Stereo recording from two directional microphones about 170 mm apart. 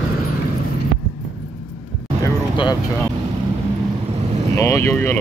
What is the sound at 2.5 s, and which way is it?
Speech, 30° left (ahead or behind).